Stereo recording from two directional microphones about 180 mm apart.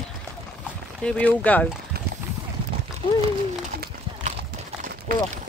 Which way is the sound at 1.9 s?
60° right (ahead or behind).